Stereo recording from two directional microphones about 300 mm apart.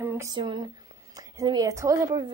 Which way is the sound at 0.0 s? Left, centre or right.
Centre.